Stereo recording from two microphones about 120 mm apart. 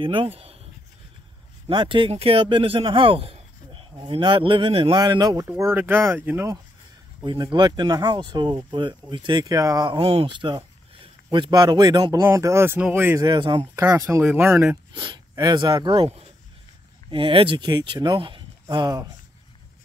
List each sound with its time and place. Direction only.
0.0 s speech: 45° right (ahead or behind)
1.7 s a man's voice: 45° right (ahead or behind)
4.9 s speech: 35° right (ahead or behind)
5.6 s speech: 20° right (ahead or behind)
7.2 s speech: 40° right (ahead or behind)
9.8 s speech: 50° right (ahead or behind); by 13.2 s 15° right (ahead or behind)
13.2 s speech: 40° right (ahead or behind)
13.8 s speech: 20° right (ahead or behind)
15.0 s speech: 35° right (ahead or behind)
17.1 s speech: 45° right (ahead or behind)